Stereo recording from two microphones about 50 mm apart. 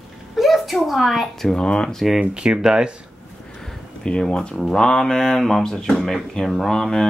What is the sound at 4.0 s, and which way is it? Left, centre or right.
Speech, centre.